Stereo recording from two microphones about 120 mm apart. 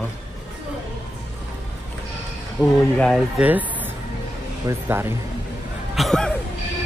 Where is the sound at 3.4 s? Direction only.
15° right (ahead or behind).